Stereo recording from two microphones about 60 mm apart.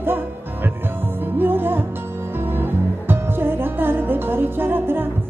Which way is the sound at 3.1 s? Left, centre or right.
Right.